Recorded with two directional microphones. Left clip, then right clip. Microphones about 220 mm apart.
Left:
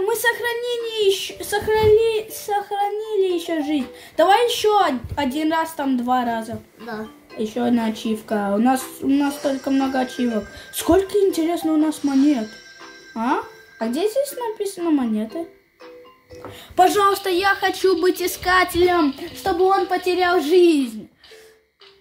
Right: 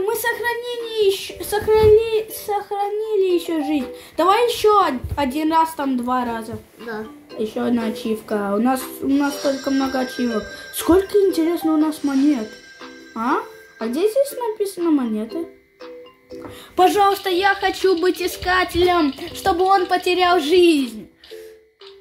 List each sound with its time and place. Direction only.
0.0 s a woman's voice: centre (ahead or behind)
9.5 s speech: 45° right (ahead or behind)
10.2 s a woman's voice: centre (ahead or behind)
13.1 s a woman's voice: 5° left (ahead or behind)
16.7 s a woman's voice: centre (ahead or behind)
17.6 s a woman's voice: centre (ahead or behind)